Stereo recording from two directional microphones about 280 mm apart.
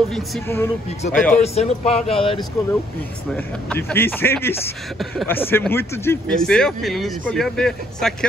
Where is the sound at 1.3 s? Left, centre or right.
Left.